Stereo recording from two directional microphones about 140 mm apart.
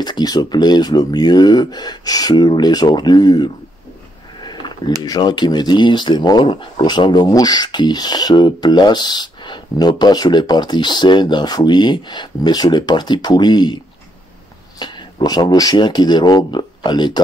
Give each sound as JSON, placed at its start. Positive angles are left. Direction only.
{"t": 0.0, "sound": "speech", "side_deg": 30}
{"t": 4.4, "sound": "a sound", "side_deg": 30}
{"t": 5.0, "sound": "speech", "side_deg": 30}
{"t": 14.8, "sound": "speech", "side_deg": 35}